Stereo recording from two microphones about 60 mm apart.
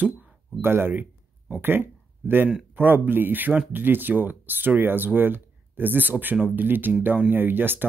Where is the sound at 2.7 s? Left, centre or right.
Right.